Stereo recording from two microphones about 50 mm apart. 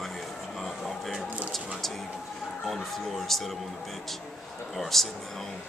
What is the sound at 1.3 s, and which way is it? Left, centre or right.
Speech, right.